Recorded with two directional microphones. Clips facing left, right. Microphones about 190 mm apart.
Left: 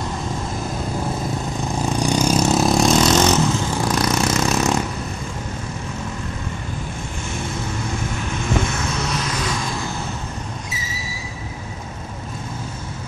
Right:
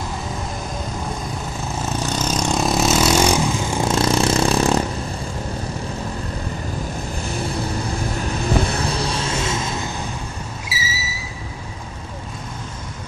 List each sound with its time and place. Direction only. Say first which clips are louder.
1.8 s vehicle: left 5 dB; 15° left (ahead or behind); by 3.4 s 10° right (ahead or behind)
3.8 s vehicle: right 3 dB; 25° right (ahead or behind)
7.2 s vehicle: right 2 dB; 35° right (ahead or behind)
10.7 s vehicle: right 2 dB; 5° right (ahead or behind)